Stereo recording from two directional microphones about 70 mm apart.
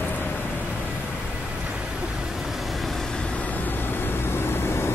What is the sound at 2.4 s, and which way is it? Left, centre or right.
Vehicle, centre.